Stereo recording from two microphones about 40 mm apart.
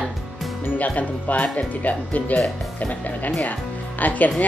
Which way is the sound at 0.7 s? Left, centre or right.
Left.